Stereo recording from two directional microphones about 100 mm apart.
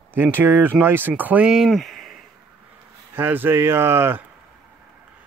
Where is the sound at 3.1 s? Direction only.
20° right (ahead or behind).